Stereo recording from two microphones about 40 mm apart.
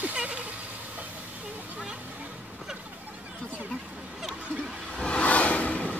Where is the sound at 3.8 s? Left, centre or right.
Centre.